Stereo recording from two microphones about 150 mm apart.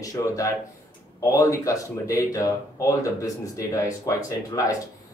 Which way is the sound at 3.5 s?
20° left (ahead or behind).